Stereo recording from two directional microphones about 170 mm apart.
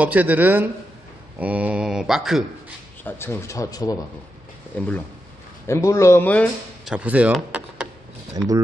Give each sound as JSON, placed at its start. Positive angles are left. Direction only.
{"t": 0.0, "sound": "speech", "side_deg": -10}
{"t": 3.0, "sound": "speech", "side_deg": 10}
{"t": 4.7, "sound": "speech", "side_deg": 10}
{"t": 6.8, "sound": "speech", "side_deg": -5}
{"t": 7.5, "sound": "a sound", "side_deg": -5}